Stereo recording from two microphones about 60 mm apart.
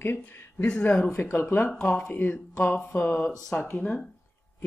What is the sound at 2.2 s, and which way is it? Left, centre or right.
Speech, left.